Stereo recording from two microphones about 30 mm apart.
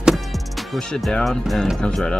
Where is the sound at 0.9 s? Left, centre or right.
Left.